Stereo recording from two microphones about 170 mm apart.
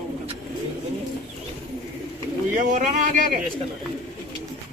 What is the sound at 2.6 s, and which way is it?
Speech, 50° right (ahead or behind).